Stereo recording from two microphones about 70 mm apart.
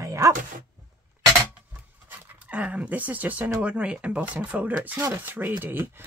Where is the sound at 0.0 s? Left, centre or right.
Right.